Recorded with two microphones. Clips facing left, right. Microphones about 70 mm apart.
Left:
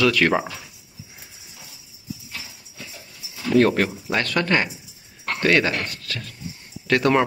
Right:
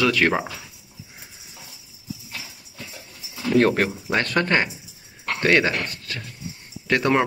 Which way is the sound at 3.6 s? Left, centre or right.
Right.